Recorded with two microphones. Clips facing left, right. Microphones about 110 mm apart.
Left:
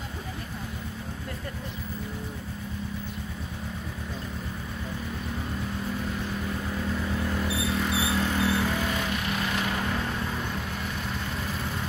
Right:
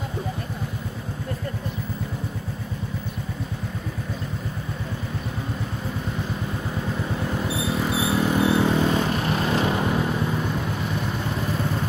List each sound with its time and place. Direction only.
7.1 s vehicle: 20° right (ahead or behind)